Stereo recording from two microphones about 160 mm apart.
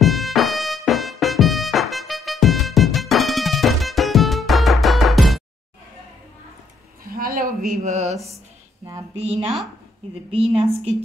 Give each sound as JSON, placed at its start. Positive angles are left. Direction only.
{"t": 0.0, "sound": "music", "side_deg": 0}
{"t": 7.1, "sound": "a sound", "side_deg": -65}
{"t": 9.1, "sound": "a woman's voice", "side_deg": -40}